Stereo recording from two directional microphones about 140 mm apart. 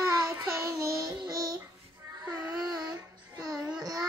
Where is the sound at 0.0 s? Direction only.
20° right (ahead or behind).